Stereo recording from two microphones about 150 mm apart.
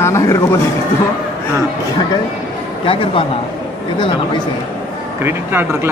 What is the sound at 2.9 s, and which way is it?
Speech, 35° left (ahead or behind).